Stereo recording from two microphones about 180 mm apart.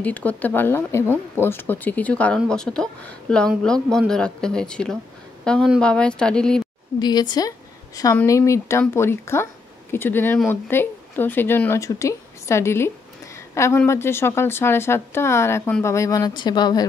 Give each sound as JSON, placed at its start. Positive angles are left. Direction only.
{"t": 0.0, "sound": "a woman's voice", "side_deg": 10}
{"t": 7.0, "sound": "a woman's voice", "side_deg": 25}